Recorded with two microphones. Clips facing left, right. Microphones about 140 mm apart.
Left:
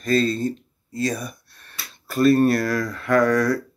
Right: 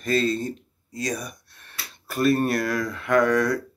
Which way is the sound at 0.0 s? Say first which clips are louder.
Left 3 dB; 20° right (ahead or behind).